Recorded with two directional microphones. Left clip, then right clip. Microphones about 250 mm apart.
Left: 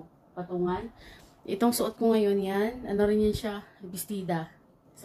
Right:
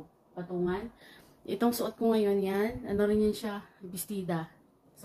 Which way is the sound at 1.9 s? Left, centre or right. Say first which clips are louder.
Left 1 dB; centre.